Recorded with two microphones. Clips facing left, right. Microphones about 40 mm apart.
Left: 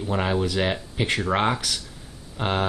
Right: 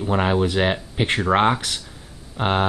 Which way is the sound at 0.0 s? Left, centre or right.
Right.